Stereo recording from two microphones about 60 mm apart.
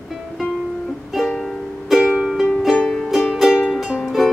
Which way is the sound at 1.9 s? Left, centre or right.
Centre.